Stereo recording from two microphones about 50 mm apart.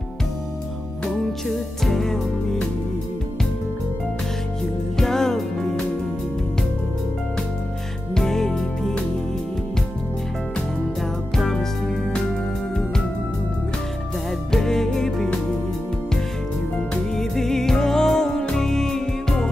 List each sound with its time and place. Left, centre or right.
1.9 s music: centre
4.9 s music: centre
8.1 s music: centre
11.3 s music: centre
14.5 s music: centre
17.1 s music: centre